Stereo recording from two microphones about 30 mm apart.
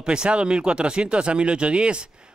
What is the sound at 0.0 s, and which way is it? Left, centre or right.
Speech, right.